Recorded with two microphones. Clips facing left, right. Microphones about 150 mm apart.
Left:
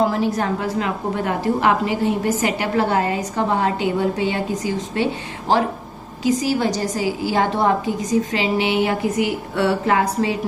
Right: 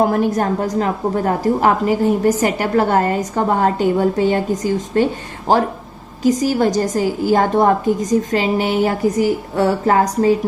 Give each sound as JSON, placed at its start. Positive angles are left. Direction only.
{"t": 0.0, "sound": "a woman's voice", "side_deg": -50}